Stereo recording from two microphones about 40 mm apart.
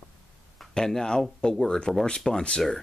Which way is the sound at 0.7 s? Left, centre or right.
Centre.